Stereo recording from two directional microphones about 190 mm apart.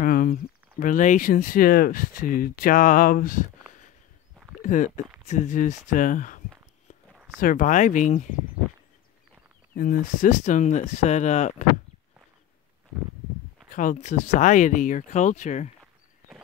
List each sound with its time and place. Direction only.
0.0 s speech: 45° left (ahead or behind)
4.6 s speech: 40° left (ahead or behind)
9.8 s speech: 45° left (ahead or behind)
13.7 s speech: 40° left (ahead or behind)